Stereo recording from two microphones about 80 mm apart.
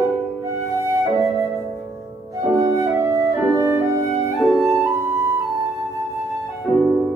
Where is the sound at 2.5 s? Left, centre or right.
Right.